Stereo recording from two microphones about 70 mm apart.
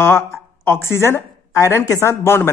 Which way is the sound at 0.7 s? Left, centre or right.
Left.